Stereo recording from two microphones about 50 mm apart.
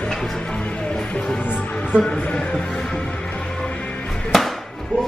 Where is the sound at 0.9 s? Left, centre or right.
Centre.